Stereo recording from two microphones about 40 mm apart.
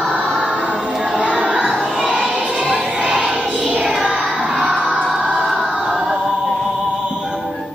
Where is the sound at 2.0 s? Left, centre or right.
Centre.